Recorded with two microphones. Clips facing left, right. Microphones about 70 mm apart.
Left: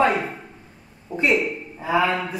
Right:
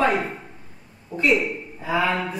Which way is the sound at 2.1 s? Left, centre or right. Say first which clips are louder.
Even; centre.